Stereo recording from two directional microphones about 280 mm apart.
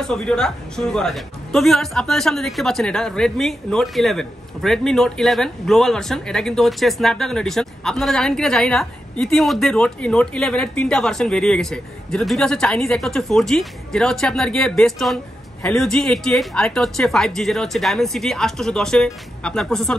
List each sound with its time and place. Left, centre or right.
0.0 s speech: centre